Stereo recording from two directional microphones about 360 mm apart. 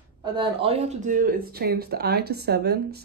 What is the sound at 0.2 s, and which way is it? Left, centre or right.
Speech, centre.